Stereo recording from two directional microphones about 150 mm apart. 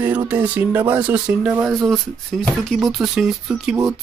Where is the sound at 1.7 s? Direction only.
Centre (ahead or behind).